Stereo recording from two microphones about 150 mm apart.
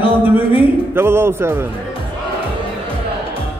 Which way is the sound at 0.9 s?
15° right (ahead or behind).